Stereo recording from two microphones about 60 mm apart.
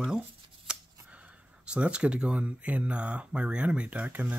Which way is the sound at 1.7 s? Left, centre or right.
Centre.